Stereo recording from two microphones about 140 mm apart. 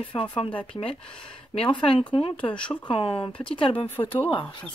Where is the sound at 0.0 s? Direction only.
35° left (ahead or behind).